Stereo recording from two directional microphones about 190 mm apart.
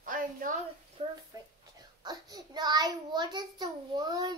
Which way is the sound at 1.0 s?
30° right (ahead or behind).